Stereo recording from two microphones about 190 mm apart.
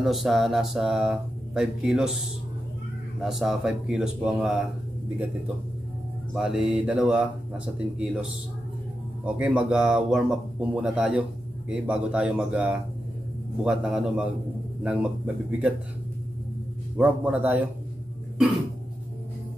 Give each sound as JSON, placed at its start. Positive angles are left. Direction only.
{"t": 0.0, "sound": "speech", "side_deg": 0}
{"t": 3.2, "sound": "speech", "side_deg": 0}
{"t": 6.3, "sound": "a man's voice", "side_deg": -5}
{"t": 16.9, "sound": "speech", "side_deg": -5}